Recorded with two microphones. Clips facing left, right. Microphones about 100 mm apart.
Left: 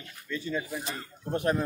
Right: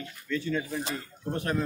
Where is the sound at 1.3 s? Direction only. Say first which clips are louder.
Left 3 dB; 20° left (ahead or behind).